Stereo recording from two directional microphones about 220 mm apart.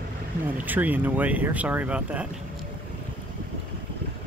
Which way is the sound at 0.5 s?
10° right (ahead or behind).